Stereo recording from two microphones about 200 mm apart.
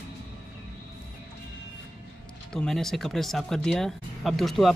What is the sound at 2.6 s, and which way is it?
Speech, centre (ahead or behind).